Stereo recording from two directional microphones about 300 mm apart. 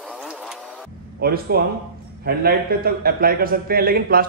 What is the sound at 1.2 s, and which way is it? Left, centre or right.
Speech, right.